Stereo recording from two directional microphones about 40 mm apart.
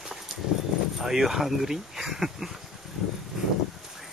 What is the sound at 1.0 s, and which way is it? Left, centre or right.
Speech, centre.